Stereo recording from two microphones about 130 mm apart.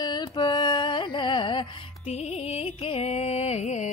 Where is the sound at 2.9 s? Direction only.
55° left (ahead or behind).